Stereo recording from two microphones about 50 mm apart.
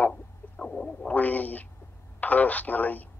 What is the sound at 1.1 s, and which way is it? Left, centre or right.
Speech, left.